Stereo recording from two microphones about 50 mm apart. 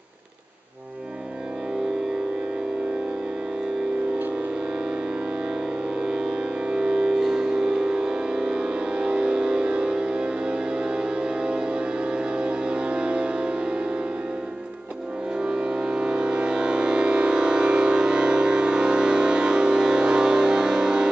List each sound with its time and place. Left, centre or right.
5.9 s music: centre
15.3 s music: centre